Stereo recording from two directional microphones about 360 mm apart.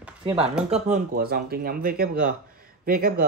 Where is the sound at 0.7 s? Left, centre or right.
Centre.